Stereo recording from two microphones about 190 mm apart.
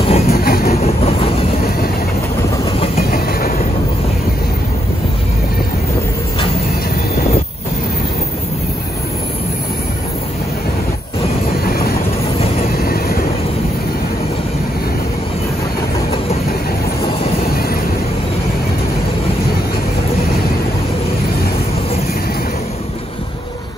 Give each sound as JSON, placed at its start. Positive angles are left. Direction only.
{"t": 0.0, "sound": "train", "side_deg": 30}
{"t": 0.4, "sound": "train", "side_deg": 50}
{"t": 0.7, "sound": "train", "side_deg": 35}
{"t": 3.0, "sound": "train", "side_deg": 50}
{"t": 11.6, "sound": "vehicle", "side_deg": 55}
{"t": 12.6, "sound": "train", "side_deg": 50}
{"t": 17.5, "sound": "vehicle", "side_deg": 50}